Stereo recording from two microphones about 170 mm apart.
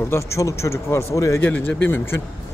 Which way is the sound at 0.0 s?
15° left (ahead or behind).